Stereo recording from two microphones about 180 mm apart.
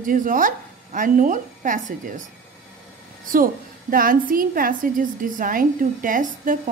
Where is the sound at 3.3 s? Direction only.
50° right (ahead or behind).